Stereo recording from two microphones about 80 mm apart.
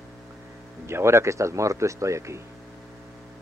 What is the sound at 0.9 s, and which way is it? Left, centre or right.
Speech, right.